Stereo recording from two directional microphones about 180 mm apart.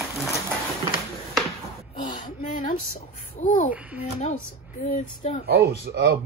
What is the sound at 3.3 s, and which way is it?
Speech, 45° left (ahead or behind).